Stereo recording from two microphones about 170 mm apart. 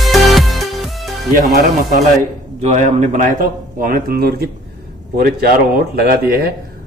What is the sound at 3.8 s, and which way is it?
Speech, 60° right (ahead or behind).